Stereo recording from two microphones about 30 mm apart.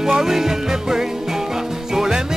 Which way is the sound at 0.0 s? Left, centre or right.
Centre.